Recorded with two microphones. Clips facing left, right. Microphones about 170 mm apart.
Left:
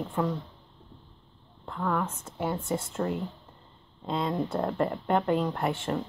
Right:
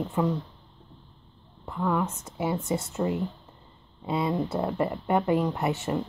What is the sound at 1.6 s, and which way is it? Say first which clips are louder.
A woman's voice: right 2 dB; 10° right (ahead or behind).